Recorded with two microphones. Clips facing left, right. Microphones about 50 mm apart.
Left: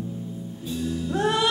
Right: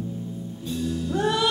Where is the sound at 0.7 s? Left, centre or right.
Centre.